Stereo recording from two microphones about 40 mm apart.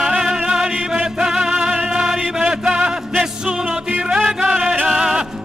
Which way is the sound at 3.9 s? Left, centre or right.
Right.